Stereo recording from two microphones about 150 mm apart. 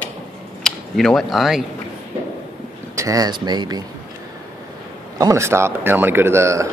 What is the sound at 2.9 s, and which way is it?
Speech, 25° right (ahead or behind).